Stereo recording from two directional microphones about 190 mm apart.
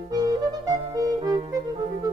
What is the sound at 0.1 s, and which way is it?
Music, 20° right (ahead or behind).